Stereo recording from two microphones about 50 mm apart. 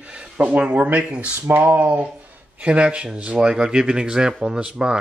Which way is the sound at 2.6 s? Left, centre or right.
Right.